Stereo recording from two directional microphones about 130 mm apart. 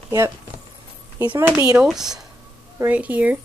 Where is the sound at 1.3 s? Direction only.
20° right (ahead or behind).